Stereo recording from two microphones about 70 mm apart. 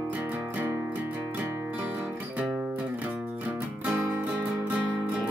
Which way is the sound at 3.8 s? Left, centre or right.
Right.